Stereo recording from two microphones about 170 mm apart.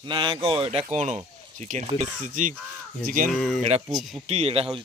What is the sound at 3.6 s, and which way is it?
Speech, 40° right (ahead or behind).